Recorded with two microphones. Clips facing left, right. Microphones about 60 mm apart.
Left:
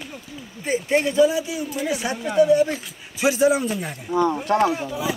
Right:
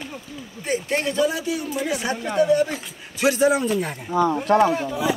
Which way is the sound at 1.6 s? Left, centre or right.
Centre.